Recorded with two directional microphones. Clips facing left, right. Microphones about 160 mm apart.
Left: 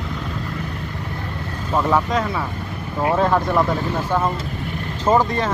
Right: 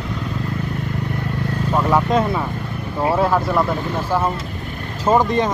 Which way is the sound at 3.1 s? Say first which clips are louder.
Even; 5° right (ahead or behind).